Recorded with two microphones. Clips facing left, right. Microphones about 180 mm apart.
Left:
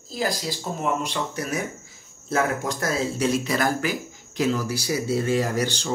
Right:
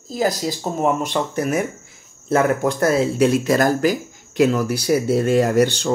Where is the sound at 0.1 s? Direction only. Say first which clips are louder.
Right 6 dB; 45° right (ahead or behind).